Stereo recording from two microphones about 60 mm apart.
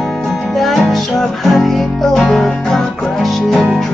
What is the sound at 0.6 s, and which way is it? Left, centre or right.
Music, centre.